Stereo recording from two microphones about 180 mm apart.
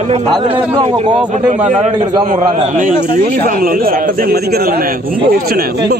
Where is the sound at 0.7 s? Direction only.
35° right (ahead or behind).